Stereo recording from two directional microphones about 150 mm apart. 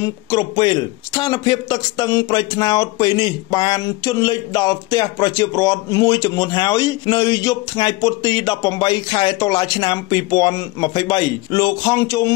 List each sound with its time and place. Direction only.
0.0 s speech: 20° left (ahead or behind)